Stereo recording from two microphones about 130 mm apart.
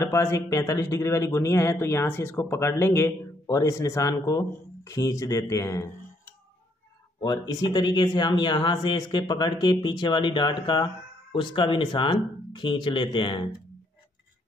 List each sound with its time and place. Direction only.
0.0 s speech: 20° left (ahead or behind); by 13.5 s 35° left (ahead or behind)